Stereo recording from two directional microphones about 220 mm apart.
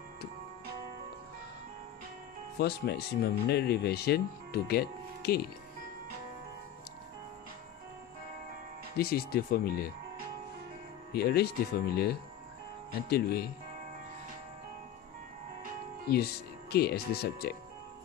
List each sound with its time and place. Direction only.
2.6 s speech: 50° left (ahead or behind)
8.9 s speech: 45° left (ahead or behind)
11.1 s speech: 45° left (ahead or behind)
16.1 s speech: 45° left (ahead or behind)